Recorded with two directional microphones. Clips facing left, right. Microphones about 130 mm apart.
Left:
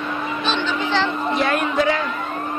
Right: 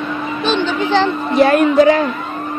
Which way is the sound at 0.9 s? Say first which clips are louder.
Right 9 dB; 45° right (ahead or behind).